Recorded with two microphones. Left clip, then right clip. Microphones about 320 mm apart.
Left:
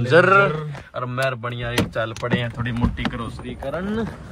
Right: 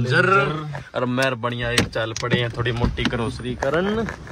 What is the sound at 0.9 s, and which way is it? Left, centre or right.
Speech, centre.